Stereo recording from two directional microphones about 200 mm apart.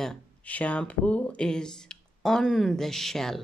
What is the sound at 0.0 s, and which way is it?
Speech, 5° left (ahead or behind).